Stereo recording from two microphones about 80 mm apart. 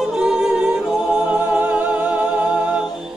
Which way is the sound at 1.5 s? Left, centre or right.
Right.